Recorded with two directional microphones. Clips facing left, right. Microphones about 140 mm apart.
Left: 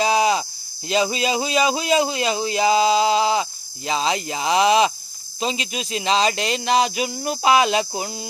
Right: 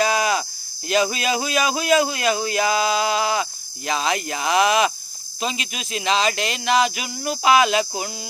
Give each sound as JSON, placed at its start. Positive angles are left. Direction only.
{"t": 0.0, "sound": "speech", "side_deg": 25}